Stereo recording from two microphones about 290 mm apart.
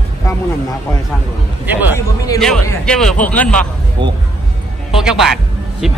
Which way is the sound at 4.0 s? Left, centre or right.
Centre.